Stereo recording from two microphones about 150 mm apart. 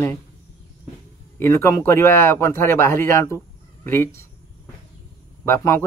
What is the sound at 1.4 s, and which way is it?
Speech, 20° left (ahead or behind).